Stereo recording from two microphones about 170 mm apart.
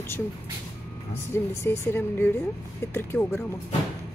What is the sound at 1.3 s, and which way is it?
Speech, 15° left (ahead or behind).